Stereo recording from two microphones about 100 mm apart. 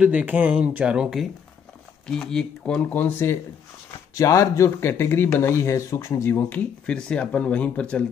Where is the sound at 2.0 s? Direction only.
5° left (ahead or behind); by 6.4 s 30° left (ahead or behind).